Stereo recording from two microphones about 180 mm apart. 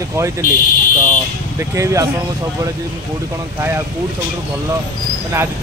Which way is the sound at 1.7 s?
15° right (ahead or behind).